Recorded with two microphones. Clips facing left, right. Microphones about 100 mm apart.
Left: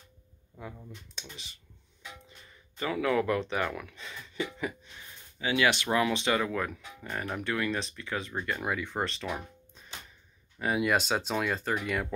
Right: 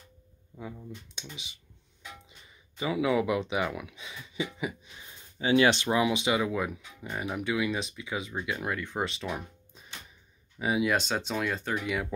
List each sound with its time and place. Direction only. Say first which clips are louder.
0.6 s speech: right 3 dB; 5° right (ahead or behind); by 5.5 s 20° right (ahead or behind)
5.5 s speech: right 4 dB; 30° right (ahead or behind)
5.9 s speech: right 1 dB; 15° right (ahead or behind)